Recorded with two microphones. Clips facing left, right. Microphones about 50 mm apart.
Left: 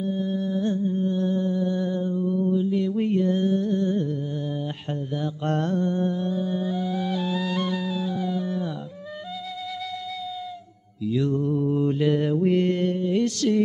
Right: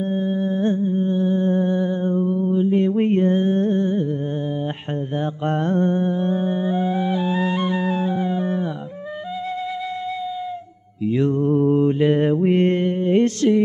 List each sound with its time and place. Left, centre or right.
0.0 s music: right
1.5 s mantra: right
2.2 s mantra: right
2.6 s music: right
5.4 s music: right
11.1 s mantra: right
11.8 s mantra: right